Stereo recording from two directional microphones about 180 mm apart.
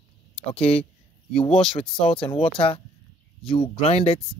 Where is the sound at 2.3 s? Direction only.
30° left (ahead or behind).